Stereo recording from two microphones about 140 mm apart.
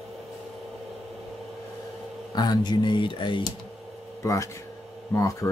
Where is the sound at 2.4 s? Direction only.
30° left (ahead or behind).